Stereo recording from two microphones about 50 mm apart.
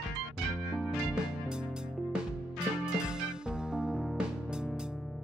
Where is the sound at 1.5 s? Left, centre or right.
Centre.